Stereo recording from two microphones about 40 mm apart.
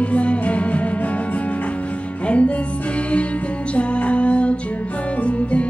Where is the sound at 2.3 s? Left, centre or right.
Left.